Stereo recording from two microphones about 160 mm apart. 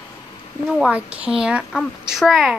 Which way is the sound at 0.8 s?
5° right (ahead or behind).